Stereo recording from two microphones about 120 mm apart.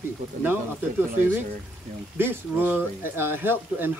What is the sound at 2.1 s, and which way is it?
A man's voice, 15° right (ahead or behind).